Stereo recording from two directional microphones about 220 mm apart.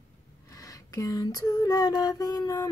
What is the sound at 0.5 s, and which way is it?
Female singing, 15° left (ahead or behind).